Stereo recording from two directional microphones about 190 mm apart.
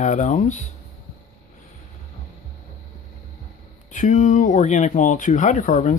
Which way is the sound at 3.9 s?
40° left (ahead or behind).